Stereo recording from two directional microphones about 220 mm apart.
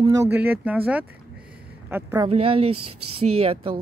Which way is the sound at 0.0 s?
15° right (ahead or behind).